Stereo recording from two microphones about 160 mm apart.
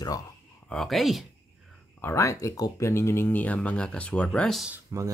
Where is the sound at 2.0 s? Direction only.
15° left (ahead or behind).